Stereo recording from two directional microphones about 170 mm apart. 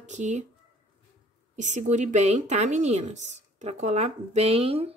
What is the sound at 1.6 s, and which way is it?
A woman's voice, 45° right (ahead or behind).